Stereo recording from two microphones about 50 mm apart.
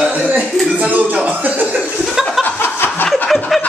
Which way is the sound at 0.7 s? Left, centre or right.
Right.